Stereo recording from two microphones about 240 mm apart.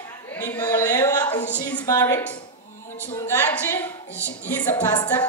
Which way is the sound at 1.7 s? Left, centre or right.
Centre.